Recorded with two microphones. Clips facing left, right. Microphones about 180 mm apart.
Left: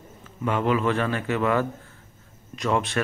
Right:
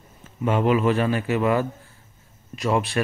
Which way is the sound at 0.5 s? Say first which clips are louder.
Right 3 dB; 20° right (ahead or behind).